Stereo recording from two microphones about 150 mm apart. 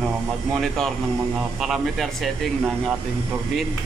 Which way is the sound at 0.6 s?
Centre (ahead or behind).